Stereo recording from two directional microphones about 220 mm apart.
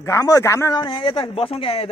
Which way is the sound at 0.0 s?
15° left (ahead or behind).